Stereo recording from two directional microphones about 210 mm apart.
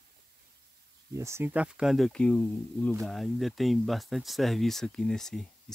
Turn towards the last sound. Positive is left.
turn(degrees=0)  # may be behind; listen again after turning